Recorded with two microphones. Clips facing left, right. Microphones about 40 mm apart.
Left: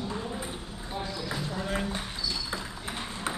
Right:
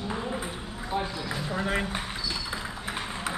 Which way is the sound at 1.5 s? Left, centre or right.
Right.